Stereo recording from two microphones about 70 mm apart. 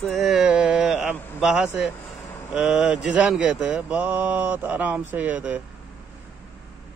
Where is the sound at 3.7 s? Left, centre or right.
Right.